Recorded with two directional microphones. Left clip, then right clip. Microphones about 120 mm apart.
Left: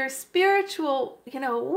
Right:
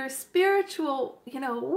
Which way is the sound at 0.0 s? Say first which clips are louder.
Left 2 dB; 20° left (ahead or behind).